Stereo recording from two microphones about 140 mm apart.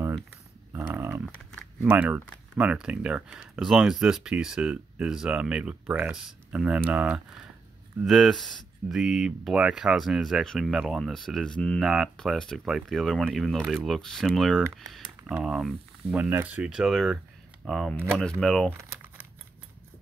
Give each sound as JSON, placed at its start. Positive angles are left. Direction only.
{"t": 0.7, "sound": "dog", "side_deg": -20}
{"t": 1.9, "sound": "speech", "side_deg": -10}
{"t": 8.0, "sound": "speech", "side_deg": 0}
{"t": 18.7, "sound": "crumpling", "side_deg": -15}